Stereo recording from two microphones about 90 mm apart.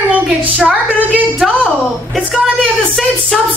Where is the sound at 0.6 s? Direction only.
15° right (ahead or behind).